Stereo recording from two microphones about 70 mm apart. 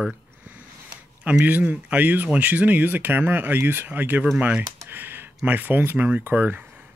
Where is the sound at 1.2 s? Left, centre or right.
Centre.